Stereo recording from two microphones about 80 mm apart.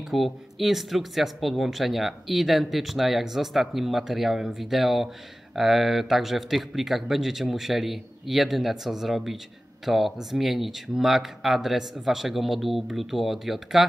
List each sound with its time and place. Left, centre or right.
0.1 s speech: centre